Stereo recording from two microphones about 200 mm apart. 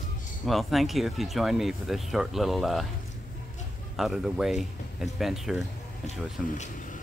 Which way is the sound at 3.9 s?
Centre (ahead or behind).